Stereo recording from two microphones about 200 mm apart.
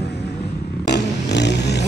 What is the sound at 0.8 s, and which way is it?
Vehicle, 55° left (ahead or behind).